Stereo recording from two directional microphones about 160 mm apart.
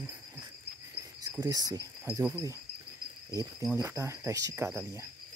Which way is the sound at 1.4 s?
25° right (ahead or behind).